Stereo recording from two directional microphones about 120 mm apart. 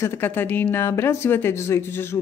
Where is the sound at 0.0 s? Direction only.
15° left (ahead or behind).